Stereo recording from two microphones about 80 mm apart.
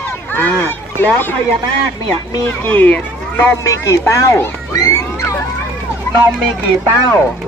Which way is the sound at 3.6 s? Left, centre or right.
Left.